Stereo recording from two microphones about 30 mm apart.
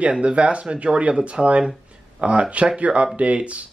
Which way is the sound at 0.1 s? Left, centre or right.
Right.